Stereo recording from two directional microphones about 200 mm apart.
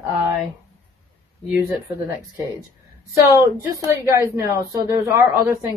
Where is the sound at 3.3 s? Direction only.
15° right (ahead or behind).